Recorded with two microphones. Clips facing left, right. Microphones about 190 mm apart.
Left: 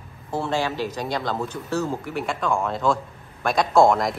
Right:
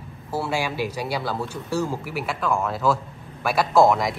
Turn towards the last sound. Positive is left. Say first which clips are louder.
# even
turn(degrees=0)  # may be behind; listen again after turning